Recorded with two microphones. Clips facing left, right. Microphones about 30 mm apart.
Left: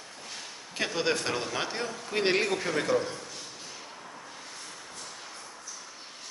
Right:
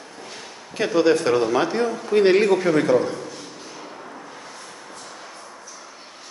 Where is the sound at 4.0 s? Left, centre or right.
Right.